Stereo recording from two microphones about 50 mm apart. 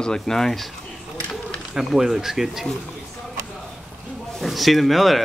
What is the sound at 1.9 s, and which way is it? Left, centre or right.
Speech, centre.